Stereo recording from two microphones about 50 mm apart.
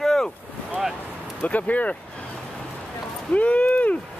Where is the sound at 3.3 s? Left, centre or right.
Left.